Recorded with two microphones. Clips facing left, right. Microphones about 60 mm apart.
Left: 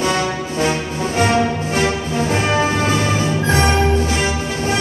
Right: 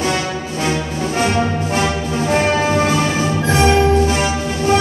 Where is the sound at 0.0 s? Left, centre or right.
Left.